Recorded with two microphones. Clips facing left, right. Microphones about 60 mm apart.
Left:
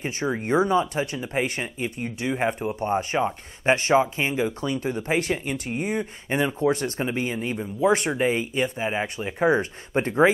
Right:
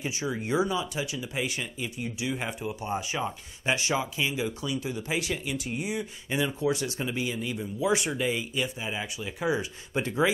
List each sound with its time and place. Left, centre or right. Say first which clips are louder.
0.0 s speech: left 5 dB; left